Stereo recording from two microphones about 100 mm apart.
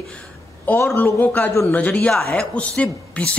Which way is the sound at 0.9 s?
20° left (ahead or behind).